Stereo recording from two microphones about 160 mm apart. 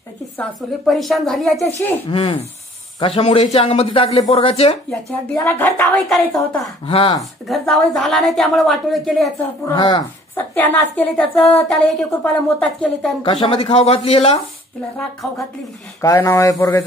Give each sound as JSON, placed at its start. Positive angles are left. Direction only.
{"t": 0.4, "sound": "a woman's voice", "side_deg": 0}
{"t": 2.0, "sound": "a man's voice", "side_deg": 35}
{"t": 5.4, "sound": "speech", "side_deg": 10}
{"t": 6.9, "sound": "a man's voice", "side_deg": 35}
{"t": 7.2, "sound": "a woman's voice", "side_deg": 0}
{"t": 9.8, "sound": "speech", "side_deg": 30}
{"t": 10.3, "sound": "speech", "side_deg": 10}
{"t": 13.2, "sound": "a man's voice", "side_deg": 35}
{"t": 16.0, "sound": "speech", "side_deg": 20}